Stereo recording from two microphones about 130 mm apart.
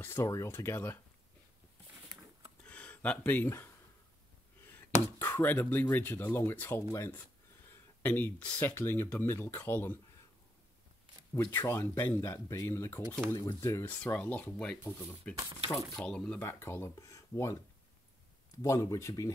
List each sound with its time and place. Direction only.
0.0 s speech: 20° left (ahead or behind)
2.7 s speech: 10° left (ahead or behind)
11.5 s speech: 20° left (ahead or behind)
16.3 s speech: 20° left (ahead or behind)
18.6 s speech: 25° left (ahead or behind)